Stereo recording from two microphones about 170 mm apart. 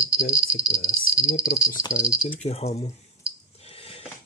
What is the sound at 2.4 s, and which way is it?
Speech, 35° left (ahead or behind).